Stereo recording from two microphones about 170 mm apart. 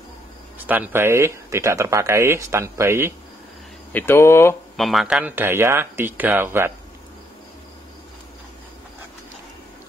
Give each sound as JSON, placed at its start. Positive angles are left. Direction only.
{"t": 0.6, "sound": "speech", "side_deg": -10}
{"t": 3.9, "sound": "speech", "side_deg": 15}
{"t": 4.7, "sound": "speech", "side_deg": 0}